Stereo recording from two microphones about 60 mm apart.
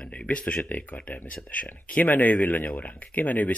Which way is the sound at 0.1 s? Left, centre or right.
Centre.